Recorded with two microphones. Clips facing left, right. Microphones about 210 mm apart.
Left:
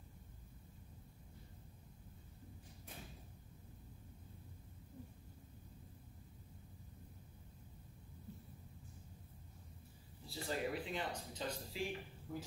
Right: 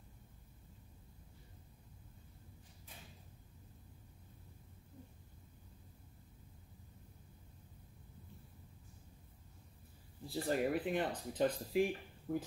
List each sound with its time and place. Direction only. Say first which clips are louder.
10.3 s a man's voice: right 6 dB; 55° right (ahead or behind)